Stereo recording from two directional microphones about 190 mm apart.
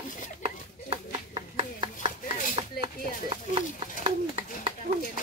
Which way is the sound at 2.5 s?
30° right (ahead or behind).